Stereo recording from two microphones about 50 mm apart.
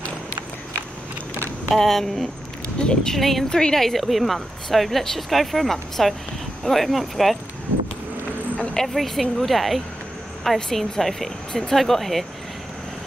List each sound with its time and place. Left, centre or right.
1.8 s speech: centre
2.8 s speech: centre
3.2 s speech: centre
3.4 s speech: centre
8.7 s speech: centre